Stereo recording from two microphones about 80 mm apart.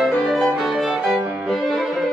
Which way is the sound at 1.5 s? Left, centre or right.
Centre.